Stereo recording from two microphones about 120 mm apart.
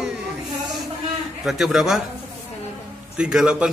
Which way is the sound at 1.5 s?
Centre (ahead or behind).